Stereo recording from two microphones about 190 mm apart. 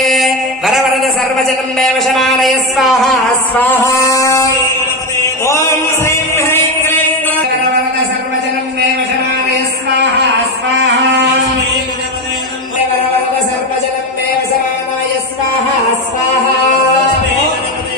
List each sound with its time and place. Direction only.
0.0 s a man's voice: centre (ahead or behind)
3.8 s music: 15° left (ahead or behind)
5.2 s chant: 15° left (ahead or behind)